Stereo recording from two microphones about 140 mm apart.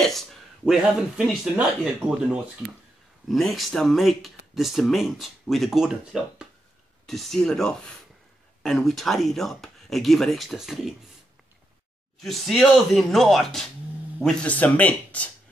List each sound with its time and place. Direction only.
0.0 s speech: centre (ahead or behind)
3.3 s speech: centre (ahead or behind)
12.2 s speech: centre (ahead or behind)